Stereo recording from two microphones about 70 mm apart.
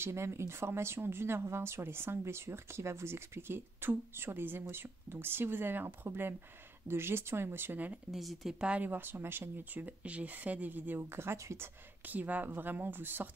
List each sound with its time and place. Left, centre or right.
0.0 s speech: right
8.1 s speech: centre
8.6 s speech: right